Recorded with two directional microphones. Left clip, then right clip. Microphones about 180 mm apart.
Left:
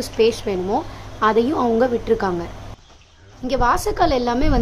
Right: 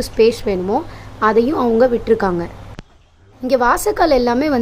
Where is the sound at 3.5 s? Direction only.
25° right (ahead or behind).